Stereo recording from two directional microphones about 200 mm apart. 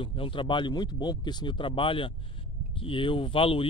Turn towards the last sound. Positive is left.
turn(degrees=25)  # may be behind; listen again after turning